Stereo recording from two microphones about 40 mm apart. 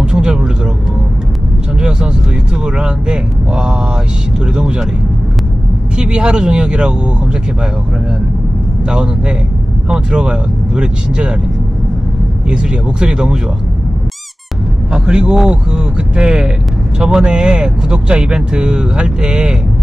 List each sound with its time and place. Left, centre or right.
0.0 s vehicle: right
1.8 s vehicle: right
4.6 s speech: right
5.9 s speech: right
8.8 s speech: right
12.4 s speech: right
14.9 s speech: right